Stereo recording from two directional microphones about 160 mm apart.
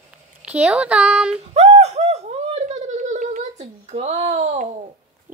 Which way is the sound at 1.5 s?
45° right (ahead or behind).